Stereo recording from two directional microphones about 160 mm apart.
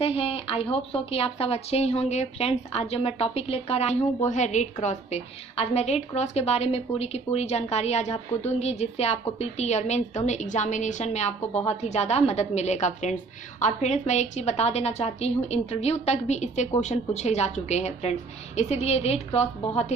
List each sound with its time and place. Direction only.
0.0 s a woman's voice: 35° left (ahead or behind)